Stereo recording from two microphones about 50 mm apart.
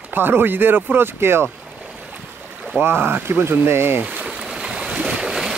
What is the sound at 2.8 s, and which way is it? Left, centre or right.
Speech, right.